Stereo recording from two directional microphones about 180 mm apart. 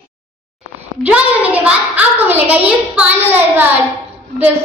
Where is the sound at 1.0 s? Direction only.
10° right (ahead or behind).